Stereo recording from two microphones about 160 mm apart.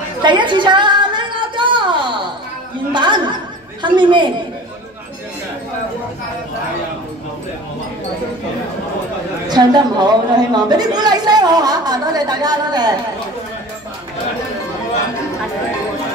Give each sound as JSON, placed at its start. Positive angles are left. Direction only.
{"t": 0.2, "sound": "a sound", "side_deg": -30}
{"t": 2.9, "sound": "a woman's voice", "side_deg": -30}
{"t": 9.5, "sound": "a woman's voice", "side_deg": -25}